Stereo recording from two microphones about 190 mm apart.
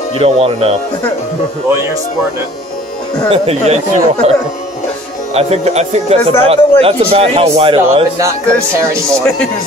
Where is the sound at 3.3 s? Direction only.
35° right (ahead or behind).